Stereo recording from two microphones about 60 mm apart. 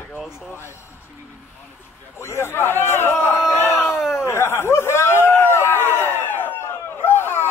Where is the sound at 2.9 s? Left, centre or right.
Left.